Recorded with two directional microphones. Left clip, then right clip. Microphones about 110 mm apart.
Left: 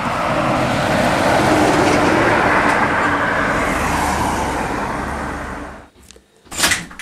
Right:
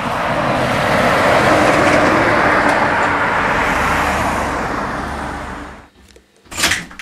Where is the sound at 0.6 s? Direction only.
20° right (ahead or behind); by 5.1 s 40° right (ahead or behind).